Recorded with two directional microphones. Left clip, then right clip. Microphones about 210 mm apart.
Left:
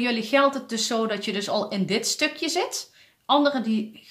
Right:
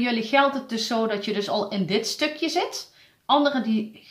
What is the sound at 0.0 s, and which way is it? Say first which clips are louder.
Speech: even; 35° left (ahead or behind).